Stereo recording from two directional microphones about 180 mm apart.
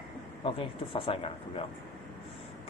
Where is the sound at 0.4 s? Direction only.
30° left (ahead or behind).